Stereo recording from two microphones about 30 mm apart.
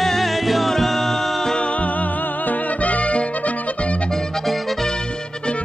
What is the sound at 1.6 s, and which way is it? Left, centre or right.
Music, left.